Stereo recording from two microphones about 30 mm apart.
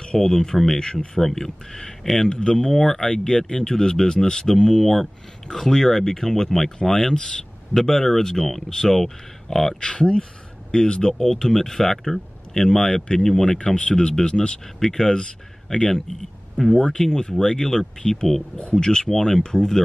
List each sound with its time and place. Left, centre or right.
0.0 s speech: left
3.0 s speech: left; by 9.8 s centre
9.8 s speech: left; by 13.5 s centre
13.7 s speech: left
14.8 s speech: centre
15.9 s speech: centre
16.7 s speech: left
17.0 s speech: centre